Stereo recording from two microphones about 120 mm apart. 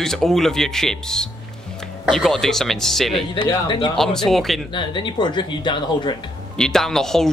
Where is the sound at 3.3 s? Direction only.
40° left (ahead or behind).